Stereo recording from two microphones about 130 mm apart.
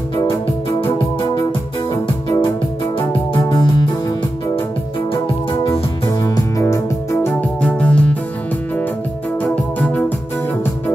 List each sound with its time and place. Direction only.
3.3 s music: 30° left (ahead or behind)
5.1 s music: 40° left (ahead or behind)
6.0 s music: 30° left (ahead or behind); by 8.2 s 10° left (ahead or behind)
9.4 s organ: 10° left (ahead or behind)